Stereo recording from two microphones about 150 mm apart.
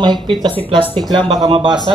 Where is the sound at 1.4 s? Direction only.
30° right (ahead or behind).